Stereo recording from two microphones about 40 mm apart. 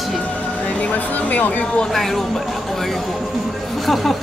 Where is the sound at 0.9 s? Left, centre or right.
Left.